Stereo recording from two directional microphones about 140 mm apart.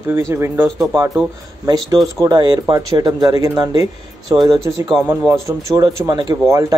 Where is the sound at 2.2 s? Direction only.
30° right (ahead or behind).